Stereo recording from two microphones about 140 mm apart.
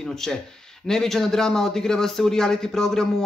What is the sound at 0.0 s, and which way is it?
A man's voice, 5° left (ahead or behind).